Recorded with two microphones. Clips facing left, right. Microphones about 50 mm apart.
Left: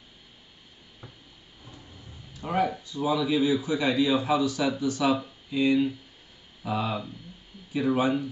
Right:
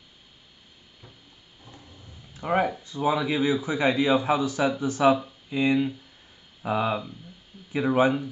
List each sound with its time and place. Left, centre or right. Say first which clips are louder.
2.3 s a man's voice: right 2 dB; right